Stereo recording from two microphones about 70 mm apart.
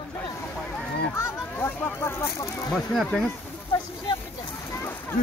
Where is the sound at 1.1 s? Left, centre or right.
Left.